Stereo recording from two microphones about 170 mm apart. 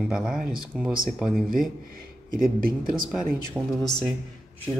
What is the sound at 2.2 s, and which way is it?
Speech, 55° right (ahead or behind).